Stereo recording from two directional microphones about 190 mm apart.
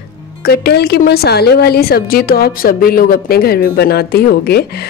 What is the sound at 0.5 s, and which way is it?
A woman's voice, 55° left (ahead or behind).